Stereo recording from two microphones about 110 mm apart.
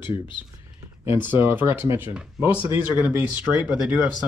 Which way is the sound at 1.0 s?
20° right (ahead or behind).